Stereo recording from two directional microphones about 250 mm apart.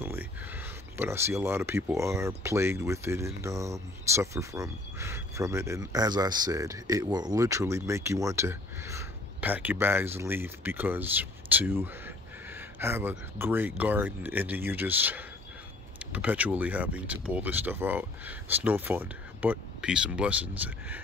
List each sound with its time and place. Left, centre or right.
0.0 s speech: centre